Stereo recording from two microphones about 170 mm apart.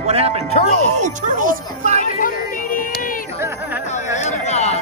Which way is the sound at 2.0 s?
55° left (ahead or behind).